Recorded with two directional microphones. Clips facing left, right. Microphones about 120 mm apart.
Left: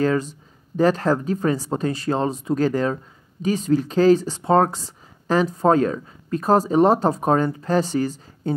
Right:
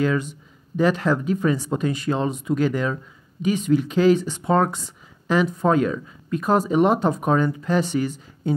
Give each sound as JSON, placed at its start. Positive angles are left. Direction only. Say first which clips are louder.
{"t": 0.0, "sound": "speech", "louder": "left 2 dB", "side_deg": 35}